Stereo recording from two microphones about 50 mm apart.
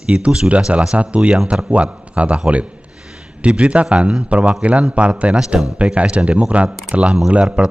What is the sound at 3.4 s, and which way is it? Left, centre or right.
A man's voice, right.